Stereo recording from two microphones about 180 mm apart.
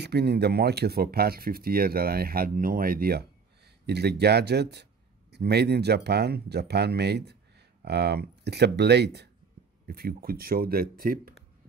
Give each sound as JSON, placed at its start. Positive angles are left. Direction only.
{"t": 0.0, "sound": "speech", "side_deg": -65}
{"t": 9.8, "sound": "speech", "side_deg": -55}